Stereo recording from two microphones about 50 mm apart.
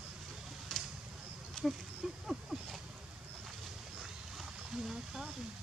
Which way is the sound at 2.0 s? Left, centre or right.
Centre.